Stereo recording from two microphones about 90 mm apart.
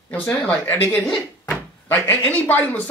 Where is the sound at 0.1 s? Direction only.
20° left (ahead or behind).